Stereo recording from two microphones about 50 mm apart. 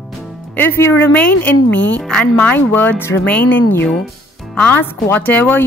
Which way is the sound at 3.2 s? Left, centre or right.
Left.